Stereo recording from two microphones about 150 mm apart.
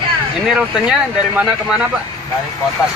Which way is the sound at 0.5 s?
5° right (ahead or behind).